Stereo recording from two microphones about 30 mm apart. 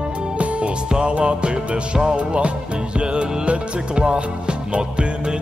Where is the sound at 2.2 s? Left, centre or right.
Right.